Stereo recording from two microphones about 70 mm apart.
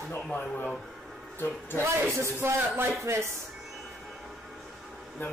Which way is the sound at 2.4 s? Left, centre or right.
Right.